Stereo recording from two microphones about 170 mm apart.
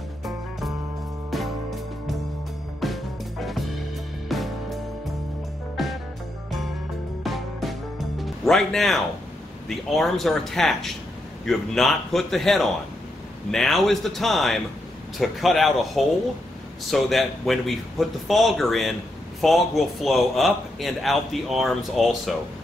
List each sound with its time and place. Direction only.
0.2 s music: centre (ahead or behind)
5.8 s music: centre (ahead or behind)
7.2 s music: centre (ahead or behind)
9.7 s a man's voice: centre (ahead or behind)